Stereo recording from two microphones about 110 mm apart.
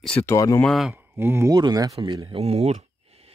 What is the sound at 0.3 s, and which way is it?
Speech, 30° left (ahead or behind).